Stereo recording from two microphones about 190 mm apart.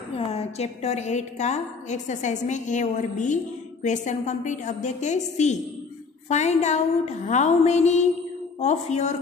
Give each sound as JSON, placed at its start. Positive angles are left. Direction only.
{"t": 0.3, "sound": "a woman's voice", "side_deg": 35}